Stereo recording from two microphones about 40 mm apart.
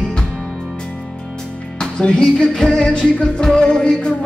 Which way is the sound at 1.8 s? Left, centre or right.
Centre.